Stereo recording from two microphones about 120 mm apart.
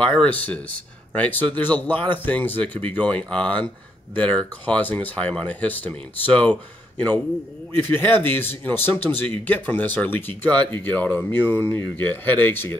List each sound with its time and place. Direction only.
0.0 s speech: 10° left (ahead or behind)